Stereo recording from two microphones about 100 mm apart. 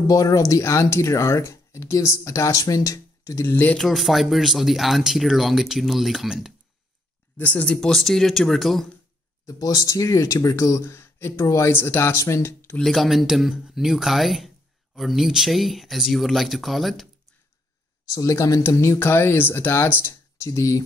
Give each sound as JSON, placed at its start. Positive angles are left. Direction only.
{"t": 0.0, "sound": "speech", "side_deg": 40}
{"t": 3.4, "sound": "speech", "side_deg": 15}
{"t": 3.8, "sound": "speech", "side_deg": 0}
{"t": 7.3, "sound": "speech", "side_deg": 15}
{"t": 9.5, "sound": "speech", "side_deg": 35}
{"t": 12.7, "sound": "speech", "side_deg": 0}
{"t": 18.1, "sound": "speech", "side_deg": 35}